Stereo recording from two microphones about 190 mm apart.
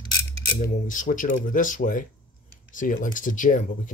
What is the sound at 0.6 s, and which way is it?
Speech, 45° left (ahead or behind).